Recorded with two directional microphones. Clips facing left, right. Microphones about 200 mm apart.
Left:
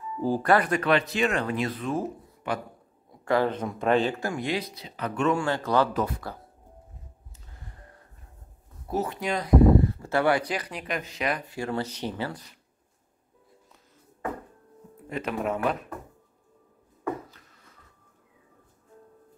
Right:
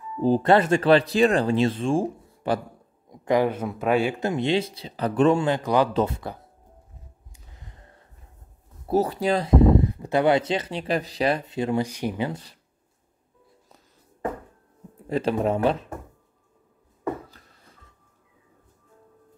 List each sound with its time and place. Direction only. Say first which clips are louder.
0.2 s speech: right 4 dB; 20° right (ahead or behind)
3.1 s speech: right 3 dB; 15° right (ahead or behind)
4.2 s speech: right 6 dB; 25° right (ahead or behind)
5.4 s speech: right 3 dB; 15° right (ahead or behind)
8.8 s speech: right 7 dB; 35° right (ahead or behind); by 12.3 s 10° right (ahead or behind)
15.0 s speech: right 6 dB; 30° right (ahead or behind)